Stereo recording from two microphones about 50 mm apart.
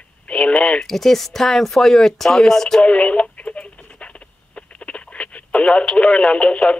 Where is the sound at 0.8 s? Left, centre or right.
Centre.